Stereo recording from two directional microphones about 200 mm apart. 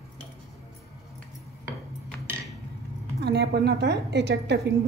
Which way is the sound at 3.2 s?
55° right (ahead or behind).